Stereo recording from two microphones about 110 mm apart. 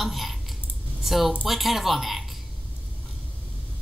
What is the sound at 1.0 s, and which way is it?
A woman's voice, centre (ahead or behind).